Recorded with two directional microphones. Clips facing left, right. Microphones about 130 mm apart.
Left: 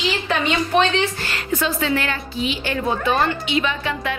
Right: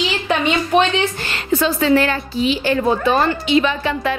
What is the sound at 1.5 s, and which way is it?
A woman's voice, 35° right (ahead or behind).